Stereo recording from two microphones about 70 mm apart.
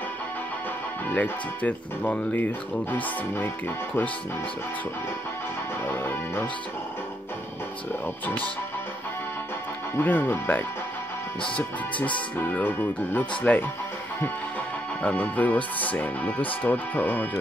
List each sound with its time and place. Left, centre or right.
1.0 s speech: left
5.9 s speech: left
9.9 s speech: left
15.0 s speech: centre